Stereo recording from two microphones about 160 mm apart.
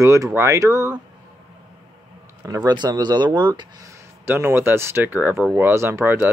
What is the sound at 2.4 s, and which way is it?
Speech, 20° right (ahead or behind).